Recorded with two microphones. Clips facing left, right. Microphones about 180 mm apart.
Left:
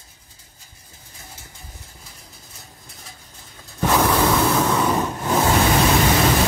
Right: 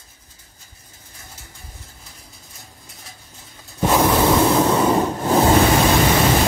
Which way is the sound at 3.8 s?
15° right (ahead or behind).